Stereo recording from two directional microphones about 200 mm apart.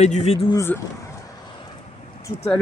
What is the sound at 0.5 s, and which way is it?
Speech, 10° left (ahead or behind).